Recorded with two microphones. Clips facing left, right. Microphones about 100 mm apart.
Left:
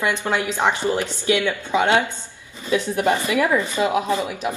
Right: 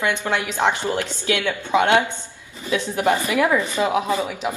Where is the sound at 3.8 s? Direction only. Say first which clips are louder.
Left 1 dB; 5° left (ahead or behind).